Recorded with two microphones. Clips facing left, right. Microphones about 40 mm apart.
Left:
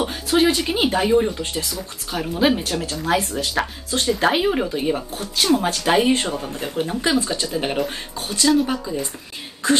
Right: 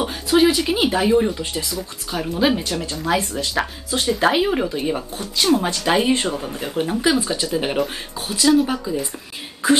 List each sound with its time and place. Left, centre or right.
0.0 s speech: centre